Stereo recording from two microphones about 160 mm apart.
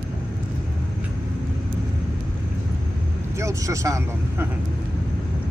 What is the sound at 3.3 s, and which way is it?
Speech, 20° right (ahead or behind).